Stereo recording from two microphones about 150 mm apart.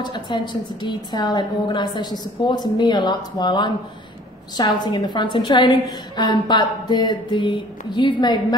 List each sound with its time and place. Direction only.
0.0 s a woman's voice: 30° left (ahead or behind)